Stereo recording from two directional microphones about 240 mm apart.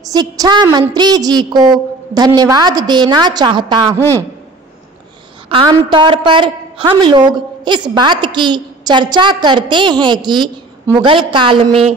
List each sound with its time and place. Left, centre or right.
0.0 s a woman's voice: centre
5.5 s a woman's voice: centre